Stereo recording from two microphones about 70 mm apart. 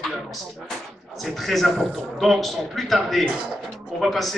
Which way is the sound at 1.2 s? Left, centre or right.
Centre.